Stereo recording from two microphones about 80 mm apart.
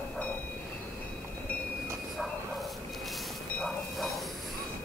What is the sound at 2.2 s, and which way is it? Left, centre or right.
Bow-wow, centre.